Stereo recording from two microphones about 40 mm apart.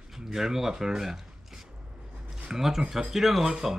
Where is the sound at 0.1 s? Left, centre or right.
Centre.